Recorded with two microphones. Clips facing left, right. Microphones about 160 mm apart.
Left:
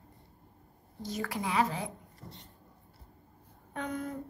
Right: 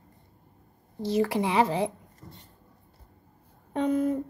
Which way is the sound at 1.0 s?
30° right (ahead or behind).